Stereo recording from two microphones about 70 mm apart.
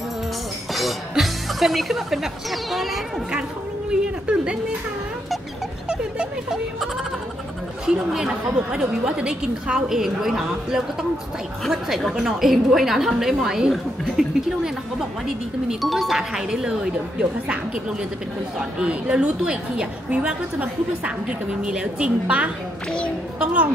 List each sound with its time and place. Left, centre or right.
0.7 s a woman's voice: centre
5.9 s a sound: centre
7.8 s a woman's voice: centre
18.6 s a woman's voice: centre
22.8 s a woman's voice: centre
23.4 s a woman's voice: centre